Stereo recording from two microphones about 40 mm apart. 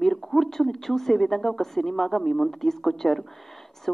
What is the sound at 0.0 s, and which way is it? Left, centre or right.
A woman's voice, centre.